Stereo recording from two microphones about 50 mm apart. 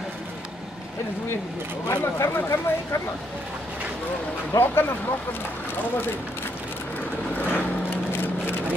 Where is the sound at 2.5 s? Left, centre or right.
Left.